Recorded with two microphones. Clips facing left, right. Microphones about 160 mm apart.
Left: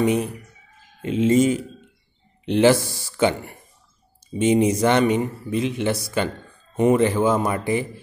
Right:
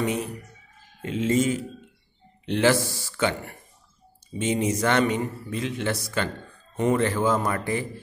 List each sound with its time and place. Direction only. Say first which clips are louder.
0.0 s speech: left 6 dB; 15° left (ahead or behind)